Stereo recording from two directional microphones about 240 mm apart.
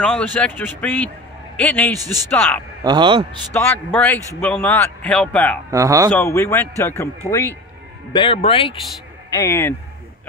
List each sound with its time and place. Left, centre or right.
0.0 s speech: centre
2.8 s speech: centre
3.5 s a man's voice: centre
5.7 s speech: centre
6.1 s speech: centre
9.4 s speech: centre